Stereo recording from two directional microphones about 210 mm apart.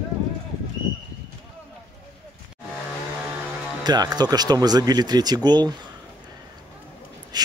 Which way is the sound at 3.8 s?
20° right (ahead or behind).